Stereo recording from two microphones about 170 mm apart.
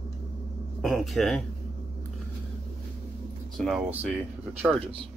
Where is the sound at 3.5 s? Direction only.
Centre (ahead or behind).